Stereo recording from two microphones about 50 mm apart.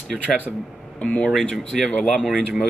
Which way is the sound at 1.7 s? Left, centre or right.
Centre.